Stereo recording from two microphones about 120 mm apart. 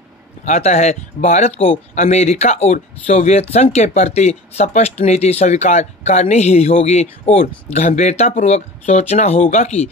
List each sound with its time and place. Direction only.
0.5 s speech: 65° left (ahead or behind)